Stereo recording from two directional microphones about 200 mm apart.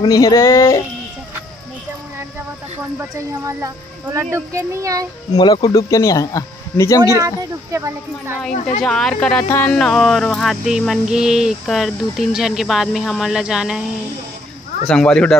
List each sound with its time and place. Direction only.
0.0 s speech: 15° left (ahead or behind)
3.0 s speech: 15° right (ahead or behind)
5.3 s speech: 20° left (ahead or behind)
7.0 s speech: 15° right (ahead or behind)
8.5 s speech: 35° left (ahead or behind)
8.8 s speech: 5° left (ahead or behind)
14.9 s speech: 5° left (ahead or behind)